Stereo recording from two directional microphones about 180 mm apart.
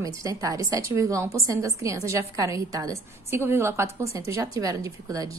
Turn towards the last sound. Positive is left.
turn(degrees=-20)  # may be behind; listen again after turning